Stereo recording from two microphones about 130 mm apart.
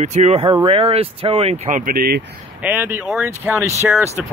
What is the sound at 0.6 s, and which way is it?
Speech, 45° right (ahead or behind).